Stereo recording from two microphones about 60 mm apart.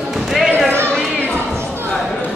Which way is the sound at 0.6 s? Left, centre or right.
Right.